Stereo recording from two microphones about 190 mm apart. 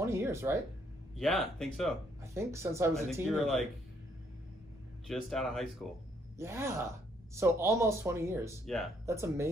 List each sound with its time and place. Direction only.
0.0 s speech: 15° right (ahead or behind)
1.1 s speech: centre (ahead or behind)
2.3 s speech: 15° right (ahead or behind)
3.3 s speech: centre (ahead or behind)
5.0 s speech: centre (ahead or behind)
6.3 s speech: 15° right (ahead or behind)